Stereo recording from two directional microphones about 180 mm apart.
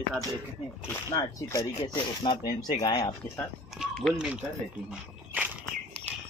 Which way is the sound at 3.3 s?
Centre (ahead or behind).